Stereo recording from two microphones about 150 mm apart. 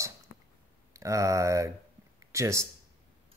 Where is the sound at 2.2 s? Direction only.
20° right (ahead or behind).